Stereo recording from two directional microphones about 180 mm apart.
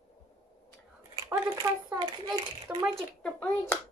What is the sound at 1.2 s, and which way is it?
Speech, 20° right (ahead or behind).